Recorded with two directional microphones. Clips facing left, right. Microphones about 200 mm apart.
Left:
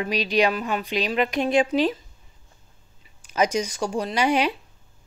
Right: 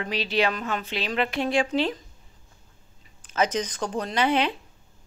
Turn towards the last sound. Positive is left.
turn(degrees=10)  # may be behind; listen again after turning